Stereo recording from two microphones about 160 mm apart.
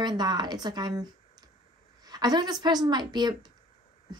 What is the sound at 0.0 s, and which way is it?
A woman's voice, 25° right (ahead or behind).